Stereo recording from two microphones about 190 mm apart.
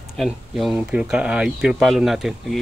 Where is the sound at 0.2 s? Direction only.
Centre (ahead or behind).